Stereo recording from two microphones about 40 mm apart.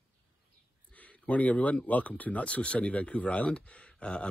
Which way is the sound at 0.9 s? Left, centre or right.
Left.